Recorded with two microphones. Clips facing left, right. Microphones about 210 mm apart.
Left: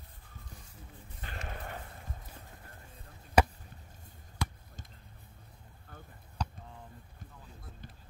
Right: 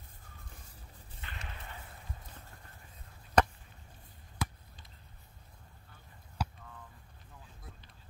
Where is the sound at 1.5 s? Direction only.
50° left (ahead or behind).